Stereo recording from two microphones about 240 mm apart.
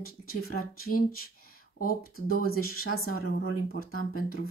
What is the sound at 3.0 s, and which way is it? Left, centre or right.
Speech, left.